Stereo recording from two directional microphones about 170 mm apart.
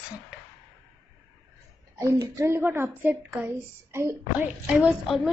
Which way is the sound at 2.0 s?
20° right (ahead or behind).